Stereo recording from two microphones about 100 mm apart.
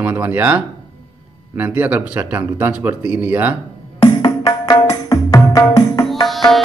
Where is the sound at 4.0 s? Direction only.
45° left (ahead or behind).